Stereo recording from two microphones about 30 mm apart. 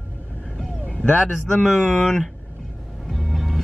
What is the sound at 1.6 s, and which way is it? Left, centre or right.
Speech, centre.